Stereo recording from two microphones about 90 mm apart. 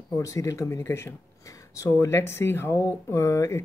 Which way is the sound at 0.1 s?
35° left (ahead or behind).